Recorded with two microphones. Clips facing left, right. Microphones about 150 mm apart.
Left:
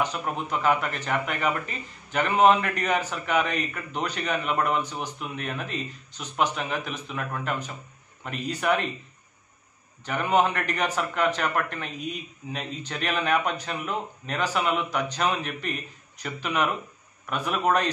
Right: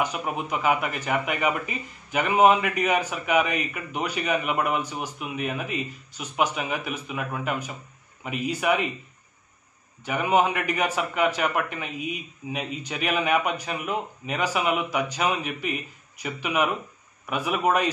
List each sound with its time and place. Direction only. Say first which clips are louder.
0.0 s a man's voice: right 1 dB; 10° right (ahead or behind)
10.0 s a man's voice: right 1 dB; 10° right (ahead or behind)